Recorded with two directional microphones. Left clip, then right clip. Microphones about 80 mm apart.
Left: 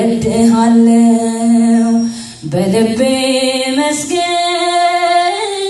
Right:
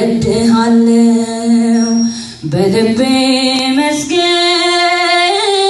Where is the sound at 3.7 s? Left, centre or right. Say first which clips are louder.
Right 2 dB; left.